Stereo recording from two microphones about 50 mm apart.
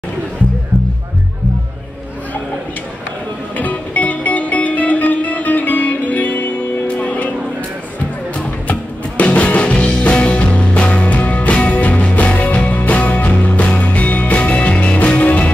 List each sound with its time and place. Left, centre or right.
3.5 s music: left
8.6 s music: left